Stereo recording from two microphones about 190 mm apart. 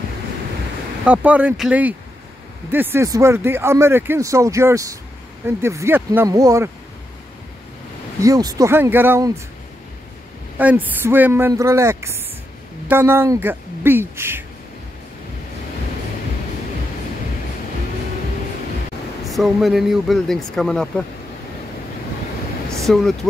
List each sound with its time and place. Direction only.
1.0 s speech: 5° right (ahead or behind)
8.2 s speech: 20° right (ahead or behind)
10.6 s speech: 10° right (ahead or behind)
19.2 s a man's voice: centre (ahead or behind)
22.9 s a man's voice: 5° left (ahead or behind)